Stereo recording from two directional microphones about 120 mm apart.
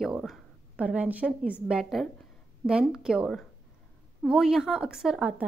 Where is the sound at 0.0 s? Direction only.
Centre (ahead or behind).